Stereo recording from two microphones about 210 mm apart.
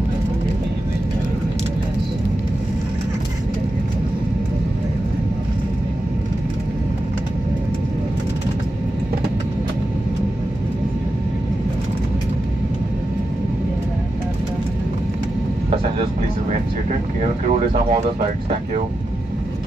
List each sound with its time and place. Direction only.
17.2 s speech: 30° right (ahead or behind)